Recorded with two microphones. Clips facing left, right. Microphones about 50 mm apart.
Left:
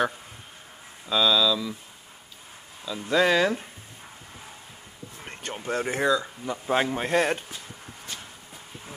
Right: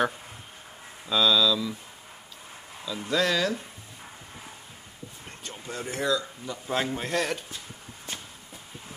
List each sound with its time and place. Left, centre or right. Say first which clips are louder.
1.0 s speech: left 1 dB; centre
2.8 s speech: left 4 dB; centre
5.4 s speech: left 8 dB; left
6.7 s speech: left 4 dB; left